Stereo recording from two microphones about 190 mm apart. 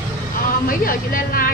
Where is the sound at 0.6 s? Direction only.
50° left (ahead or behind).